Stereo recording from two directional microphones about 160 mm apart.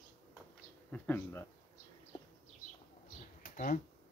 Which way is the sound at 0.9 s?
10° left (ahead or behind).